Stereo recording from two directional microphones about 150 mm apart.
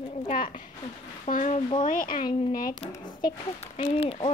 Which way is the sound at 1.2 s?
55° left (ahead or behind).